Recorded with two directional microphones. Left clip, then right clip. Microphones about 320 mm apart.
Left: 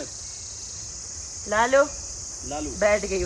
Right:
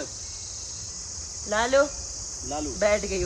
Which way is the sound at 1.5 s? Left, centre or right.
Centre.